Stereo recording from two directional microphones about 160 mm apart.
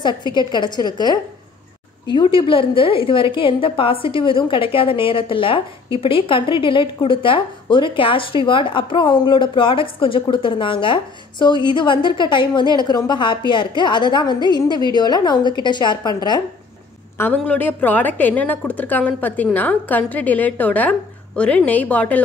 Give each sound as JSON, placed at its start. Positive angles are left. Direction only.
{"t": 0.0, "sound": "a woman's voice", "side_deg": 30}
{"t": 17.2, "sound": "a woman's voice", "side_deg": 10}